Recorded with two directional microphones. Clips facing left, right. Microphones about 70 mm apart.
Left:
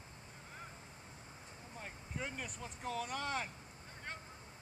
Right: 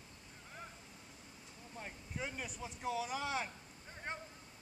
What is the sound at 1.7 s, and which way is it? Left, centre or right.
Speech, centre.